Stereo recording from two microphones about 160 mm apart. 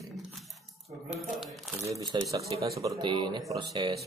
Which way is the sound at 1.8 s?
20° right (ahead or behind).